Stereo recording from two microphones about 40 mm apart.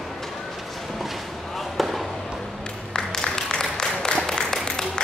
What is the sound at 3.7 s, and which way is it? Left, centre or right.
Applause, centre.